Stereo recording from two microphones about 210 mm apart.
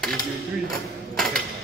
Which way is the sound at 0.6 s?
Centre (ahead or behind).